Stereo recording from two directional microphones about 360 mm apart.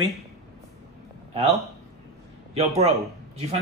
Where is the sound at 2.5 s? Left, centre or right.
Centre.